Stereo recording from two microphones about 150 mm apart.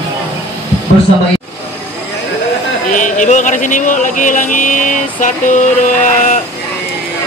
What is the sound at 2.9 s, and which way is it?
Speech, 55° left (ahead or behind).